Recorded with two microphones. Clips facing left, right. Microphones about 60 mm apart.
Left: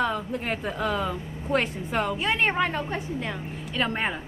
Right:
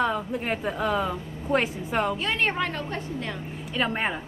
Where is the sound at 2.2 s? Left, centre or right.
Centre.